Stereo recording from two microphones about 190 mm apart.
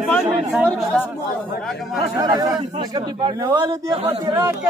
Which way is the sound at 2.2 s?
20° right (ahead or behind).